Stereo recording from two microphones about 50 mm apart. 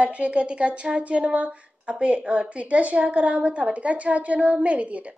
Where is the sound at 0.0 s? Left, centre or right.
Right.